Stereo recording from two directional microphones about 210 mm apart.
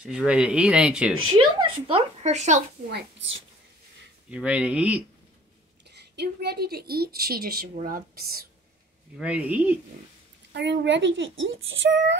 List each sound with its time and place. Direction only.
0.0 s speech: 5° right (ahead or behind)
1.6 s speech: 25° right (ahead or behind)
4.3 s speech: 5° right (ahead or behind)
5.9 s a woman's voice: 50° right (ahead or behind)
9.2 s speech: 5° right (ahead or behind)
10.5 s speech: 55° right (ahead or behind)